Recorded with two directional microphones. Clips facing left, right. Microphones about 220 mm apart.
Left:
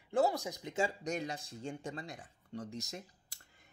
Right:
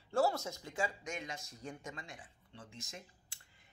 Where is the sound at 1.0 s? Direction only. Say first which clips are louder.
Left 6 dB; 35° left (ahead or behind).